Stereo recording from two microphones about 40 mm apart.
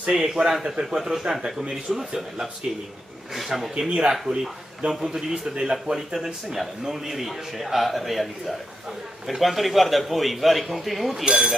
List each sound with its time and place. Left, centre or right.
0.1 s speech: centre
3.9 s a man's voice: right
4.8 s a man's voice: right
5.3 s a man's voice: right
6.1 s speech: centre
11.2 s speech: centre